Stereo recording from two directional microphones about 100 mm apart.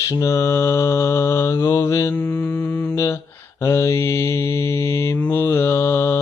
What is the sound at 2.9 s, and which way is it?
Mantra, 30° left (ahead or behind).